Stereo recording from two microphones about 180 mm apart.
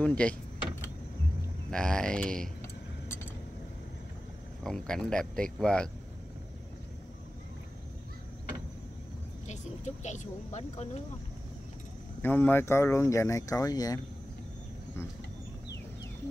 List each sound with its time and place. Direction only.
0.0 s a sound: 5° left (ahead or behind)
1.7 s speech: 5° left (ahead or behind)
4.6 s speech: 5° left (ahead or behind)
9.5 s speech: 40° left (ahead or behind)
12.2 s speech: 10° left (ahead or behind)